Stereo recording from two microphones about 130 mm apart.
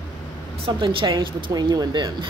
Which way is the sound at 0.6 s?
40° right (ahead or behind).